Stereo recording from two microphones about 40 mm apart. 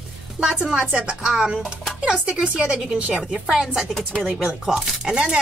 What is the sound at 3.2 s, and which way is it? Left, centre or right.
Speech, centre.